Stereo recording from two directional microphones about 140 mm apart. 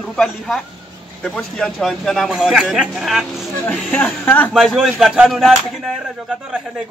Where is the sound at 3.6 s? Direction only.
10° left (ahead or behind).